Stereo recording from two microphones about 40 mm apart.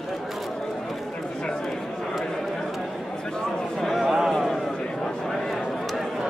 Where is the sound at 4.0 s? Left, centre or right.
Centre.